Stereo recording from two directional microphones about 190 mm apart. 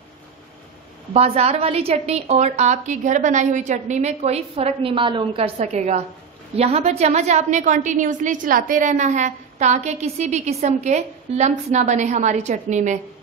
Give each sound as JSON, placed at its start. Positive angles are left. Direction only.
{"t": 1.1, "sound": "a woman's voice", "side_deg": -35}